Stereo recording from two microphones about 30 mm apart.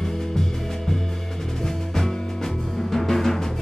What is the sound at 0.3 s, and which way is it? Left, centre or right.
Music, centre.